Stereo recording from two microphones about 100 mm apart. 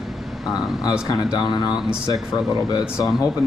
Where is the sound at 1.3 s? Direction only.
45° left (ahead or behind).